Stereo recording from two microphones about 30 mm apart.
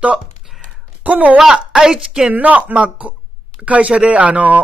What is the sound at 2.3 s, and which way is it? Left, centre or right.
Speech, right.